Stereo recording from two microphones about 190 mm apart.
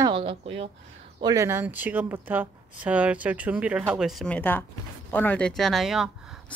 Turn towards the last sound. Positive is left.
turn(degrees=0)  # may be behind; listen again after turning